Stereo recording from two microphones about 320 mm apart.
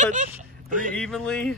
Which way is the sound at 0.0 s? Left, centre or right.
Right.